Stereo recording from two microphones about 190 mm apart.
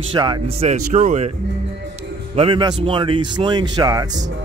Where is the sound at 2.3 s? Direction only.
30° right (ahead or behind).